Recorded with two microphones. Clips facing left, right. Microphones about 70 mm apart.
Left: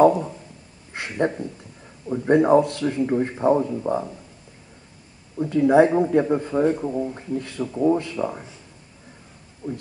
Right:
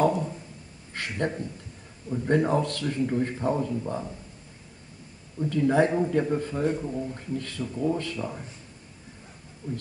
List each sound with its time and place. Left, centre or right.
0.0 s a sound: left
0.9 s speech: left
5.4 s speech: left
9.6 s speech: centre